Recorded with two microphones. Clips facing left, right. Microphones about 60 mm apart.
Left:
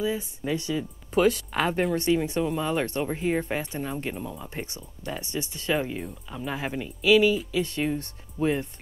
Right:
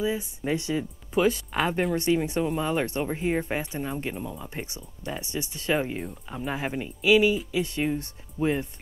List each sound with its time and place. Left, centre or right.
0.0 s speech: centre
1.1 s speech: centre
2.2 s speech: centre
4.6 s speech: centre